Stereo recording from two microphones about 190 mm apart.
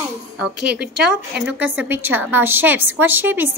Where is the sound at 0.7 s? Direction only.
5° right (ahead or behind).